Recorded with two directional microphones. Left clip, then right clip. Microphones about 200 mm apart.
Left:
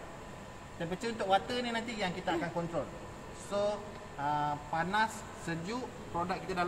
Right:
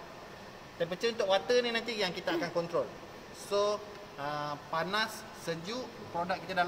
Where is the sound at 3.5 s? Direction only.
40° right (ahead or behind).